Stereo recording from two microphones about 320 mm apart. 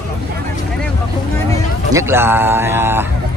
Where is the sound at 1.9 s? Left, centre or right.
Centre.